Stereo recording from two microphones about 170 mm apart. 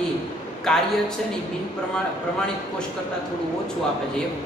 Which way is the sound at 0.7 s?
5° left (ahead or behind).